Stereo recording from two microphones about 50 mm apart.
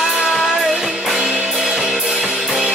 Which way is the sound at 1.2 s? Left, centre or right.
Centre.